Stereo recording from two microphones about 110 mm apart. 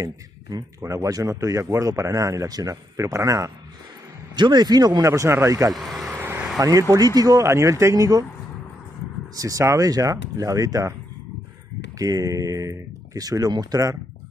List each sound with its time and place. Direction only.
0.0 s speech: 35° right (ahead or behind)
0.7 s a man's voice: 25° right (ahead or behind)
4.4 s speech: 40° right (ahead or behind)
5.7 s speech: centre (ahead or behind)
6.1 s vehicle: 20° right (ahead or behind)
6.6 s speech: 30° right (ahead or behind)
9.3 s speech: 30° right (ahead or behind)
12.0 s speech: 35° right (ahead or behind)